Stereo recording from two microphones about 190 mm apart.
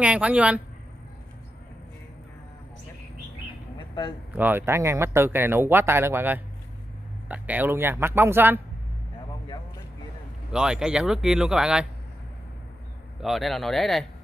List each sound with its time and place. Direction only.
0.0 s speech: 5° right (ahead or behind)
3.7 s a sound: 25° left (ahead or behind)
4.4 s speech: 10° right (ahead or behind)
10.5 s speech: 5° right (ahead or behind)
13.2 s speech: centre (ahead or behind)